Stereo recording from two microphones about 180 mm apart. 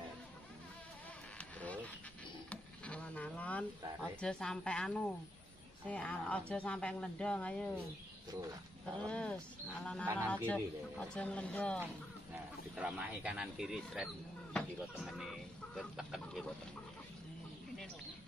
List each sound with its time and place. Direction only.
1.4 s a sound: 10° left (ahead or behind)
5.9 s speech: 5° left (ahead or behind)
8.3 s speech: 20° right (ahead or behind)
9.0 s speech: 5° left (ahead or behind)
12.7 s speech: 5° right (ahead or behind)